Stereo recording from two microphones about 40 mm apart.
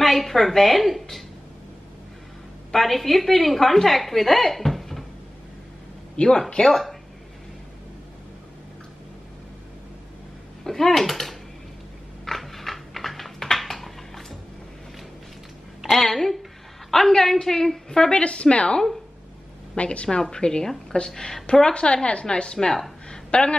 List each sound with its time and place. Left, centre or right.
0.0 s a woman's voice: centre
2.7 s a woman's voice: centre
6.1 s speech: left
6.7 s speech: centre
10.6 s speech: centre
12.3 s a sound: centre
16.0 s a woman's voice: centre; by 20.2 s left
20.2 s a woman's voice: centre
23.0 s a sound: left